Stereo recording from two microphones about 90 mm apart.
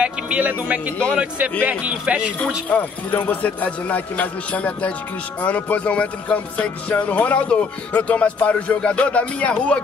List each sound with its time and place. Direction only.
0.0 s speech: 15° right (ahead or behind)
2.7 s speech: 15° left (ahead or behind)